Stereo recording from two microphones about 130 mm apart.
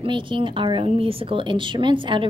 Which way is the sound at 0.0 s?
40° right (ahead or behind).